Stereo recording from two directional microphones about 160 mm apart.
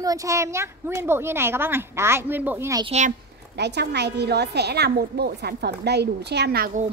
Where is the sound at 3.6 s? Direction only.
90° right.